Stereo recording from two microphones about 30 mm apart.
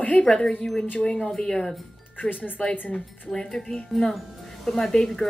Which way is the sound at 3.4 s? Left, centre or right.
Left.